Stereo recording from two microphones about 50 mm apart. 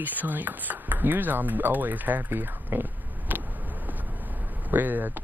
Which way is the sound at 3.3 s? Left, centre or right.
Right.